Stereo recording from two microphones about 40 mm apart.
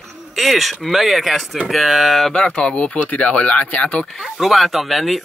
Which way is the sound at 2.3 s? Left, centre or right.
Left.